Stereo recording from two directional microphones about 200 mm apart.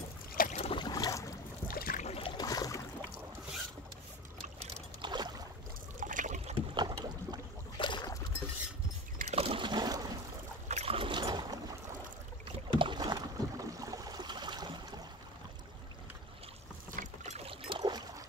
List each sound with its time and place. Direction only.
0.4 s boat: 35° left (ahead or behind); by 1.3 s 15° left (ahead or behind)
1.7 s boat: 45° left (ahead or behind)
2.0 s boat: 25° left (ahead or behind)
5.0 s boat: 20° right (ahead or behind)
5.9 s trickle: 40° right (ahead or behind)
6.7 s boat: 20° right (ahead or behind)
7.8 s boat: 20° left (ahead or behind)
9.2 s a sound: 30° right (ahead or behind)
10.7 s boat: 30° right (ahead or behind)
12.7 s boat: 25° right (ahead or behind)
16.9 s boat: 40° right (ahead or behind)
17.5 s boat: 25° right (ahead or behind)